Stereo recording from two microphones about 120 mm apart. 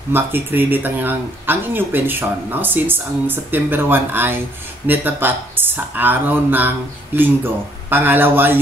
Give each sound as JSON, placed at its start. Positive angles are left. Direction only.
{"t": 0.1, "sound": "speech", "side_deg": -15}